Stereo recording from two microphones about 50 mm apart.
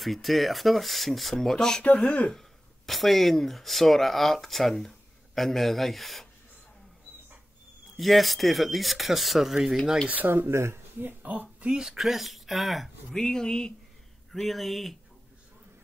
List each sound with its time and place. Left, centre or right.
0.0 s speech: centre
2.9 s speech: centre
8.0 s speech: centre
10.2 s speech: right
11.8 s speech: centre
13.1 s speech: centre
14.3 s speech: centre